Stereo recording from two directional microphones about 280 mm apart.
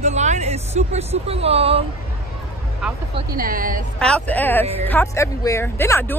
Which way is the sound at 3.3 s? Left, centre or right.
Right.